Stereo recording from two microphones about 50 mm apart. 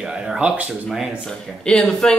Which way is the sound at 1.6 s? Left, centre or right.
Centre.